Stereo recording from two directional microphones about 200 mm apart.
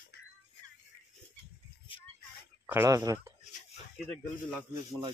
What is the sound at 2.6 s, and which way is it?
Speech, 15° right (ahead or behind).